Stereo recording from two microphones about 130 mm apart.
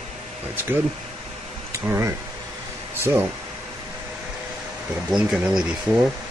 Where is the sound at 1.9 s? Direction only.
20° right (ahead or behind).